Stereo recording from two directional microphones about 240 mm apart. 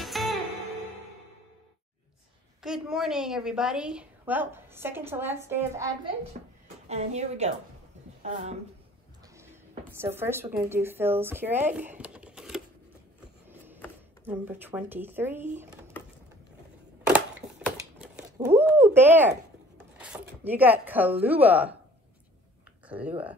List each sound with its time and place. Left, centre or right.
0.0 s music: centre
2.6 s a woman's voice: centre
6.4 s a woman's voice: right
6.9 s a woman's voice: right
9.9 s speech: centre
14.2 s a woman's voice: centre
17.9 s a sound: centre
18.5 s a woman's voice: centre
20.4 s a woman's voice: centre
22.8 s speech: centre